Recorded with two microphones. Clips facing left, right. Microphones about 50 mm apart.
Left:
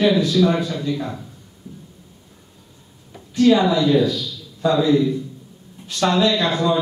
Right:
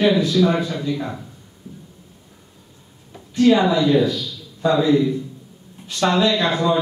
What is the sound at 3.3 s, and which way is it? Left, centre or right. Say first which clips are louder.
A man's voice: even; right.